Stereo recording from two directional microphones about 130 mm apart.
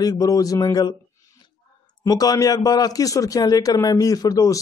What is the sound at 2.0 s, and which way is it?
A man's voice, 30° left (ahead or behind).